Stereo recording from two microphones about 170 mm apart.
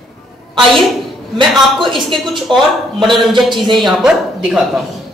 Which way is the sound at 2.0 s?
Centre (ahead or behind).